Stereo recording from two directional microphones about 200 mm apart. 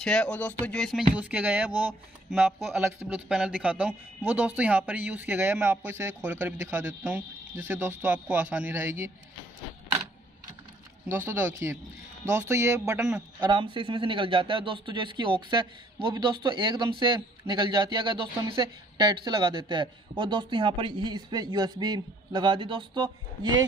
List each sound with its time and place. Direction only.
0.0 s speech: 5° left (ahead or behind); by 9.1 s 10° right (ahead or behind)
11.1 s speech: 10° right (ahead or behind)
13.4 s speech: 25° right (ahead or behind)